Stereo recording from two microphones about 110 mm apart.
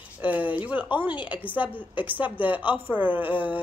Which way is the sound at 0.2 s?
15° right (ahead or behind).